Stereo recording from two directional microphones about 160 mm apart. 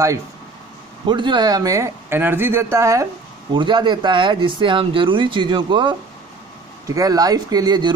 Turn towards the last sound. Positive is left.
turn(degrees=-25)  # may be behind; listen again after turning